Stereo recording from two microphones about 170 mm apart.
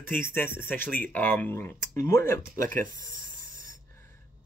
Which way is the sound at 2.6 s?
55° right (ahead or behind).